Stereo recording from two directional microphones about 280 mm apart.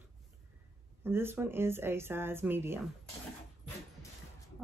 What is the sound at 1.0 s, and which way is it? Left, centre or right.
Speech, centre.